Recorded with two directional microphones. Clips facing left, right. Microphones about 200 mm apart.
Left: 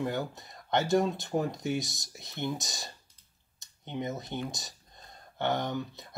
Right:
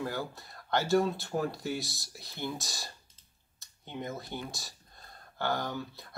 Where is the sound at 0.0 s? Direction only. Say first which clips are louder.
Left 3 dB; 20° left (ahead or behind).